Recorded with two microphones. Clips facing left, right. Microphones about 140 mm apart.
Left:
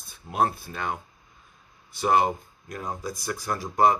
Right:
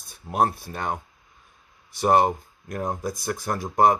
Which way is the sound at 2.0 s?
45° right (ahead or behind).